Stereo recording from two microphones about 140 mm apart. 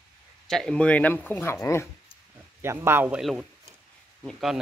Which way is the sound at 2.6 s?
15° right (ahead or behind).